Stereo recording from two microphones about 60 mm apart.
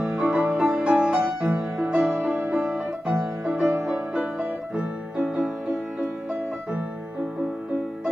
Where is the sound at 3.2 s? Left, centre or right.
Right.